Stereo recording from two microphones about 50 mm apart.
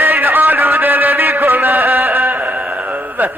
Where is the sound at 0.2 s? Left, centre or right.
Right.